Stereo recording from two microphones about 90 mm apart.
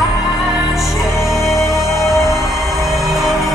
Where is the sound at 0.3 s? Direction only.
Centre (ahead or behind).